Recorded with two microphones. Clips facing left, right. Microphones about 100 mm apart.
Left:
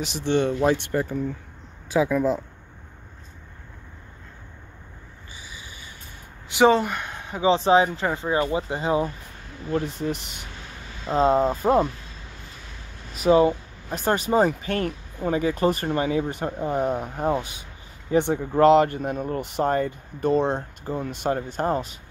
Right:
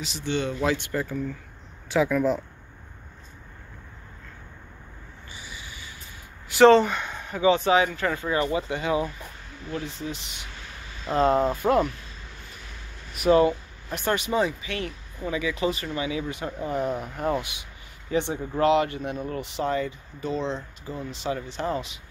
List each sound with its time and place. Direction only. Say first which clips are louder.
0.2 s speech: left 5 dB; 40° left (ahead or behind)
0.6 s speech: left 4 dB; 30° left (ahead or behind)
6.5 s speech: right 3 dB; 10° left (ahead or behind)
7.2 s speech: left 1 dB; 25° left (ahead or behind)
9.7 s speech: left 7 dB; 45° left (ahead or behind)
11.1 s speech: left 2 dB; 30° left (ahead or behind)
13.3 s speech: left 2 dB; 25° left (ahead or behind); by 16.4 s 45° left (ahead or behind)
16.4 s speech: even; 35° left (ahead or behind)
18.1 s speech: left 5 dB; 55° left (ahead or behind)